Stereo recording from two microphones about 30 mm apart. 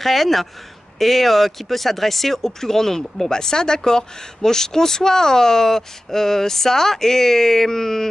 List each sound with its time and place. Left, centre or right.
0.0 s speech: centre
3.3 s speech: left